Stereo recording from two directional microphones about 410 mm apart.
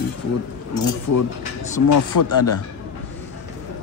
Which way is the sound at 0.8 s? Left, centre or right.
Left.